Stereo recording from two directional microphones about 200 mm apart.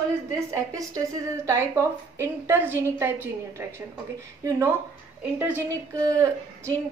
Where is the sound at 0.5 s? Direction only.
15° right (ahead or behind).